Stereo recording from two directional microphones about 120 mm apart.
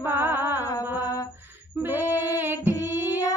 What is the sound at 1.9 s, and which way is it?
Female singing, 25° left (ahead or behind).